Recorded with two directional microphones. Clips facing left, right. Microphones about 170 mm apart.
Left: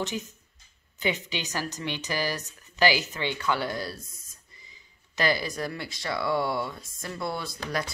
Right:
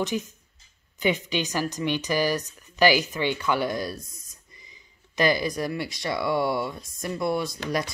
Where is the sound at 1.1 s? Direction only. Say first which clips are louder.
Right 6 dB; 20° left (ahead or behind).